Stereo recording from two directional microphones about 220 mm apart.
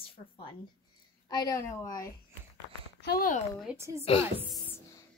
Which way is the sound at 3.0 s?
40° left (ahead or behind).